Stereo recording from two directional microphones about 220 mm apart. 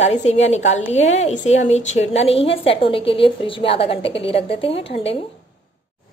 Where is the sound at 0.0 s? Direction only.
30° left (ahead or behind).